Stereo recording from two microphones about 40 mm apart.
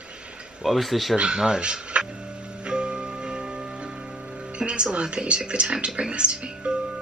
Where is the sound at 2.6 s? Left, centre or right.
Right.